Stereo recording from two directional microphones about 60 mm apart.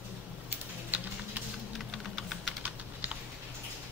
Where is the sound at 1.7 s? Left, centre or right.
Centre.